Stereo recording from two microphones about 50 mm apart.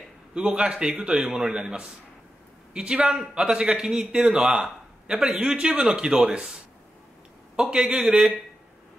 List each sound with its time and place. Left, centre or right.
0.3 s a man's voice: right